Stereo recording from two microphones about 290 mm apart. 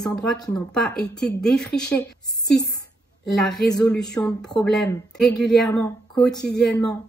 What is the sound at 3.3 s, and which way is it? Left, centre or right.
Speech, centre.